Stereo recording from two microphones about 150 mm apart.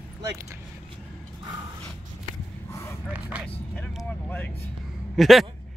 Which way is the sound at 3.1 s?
10° right (ahead or behind).